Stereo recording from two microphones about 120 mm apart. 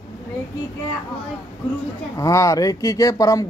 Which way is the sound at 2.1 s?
25° left (ahead or behind).